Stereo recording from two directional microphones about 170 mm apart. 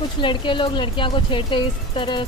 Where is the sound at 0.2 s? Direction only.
30° left (ahead or behind).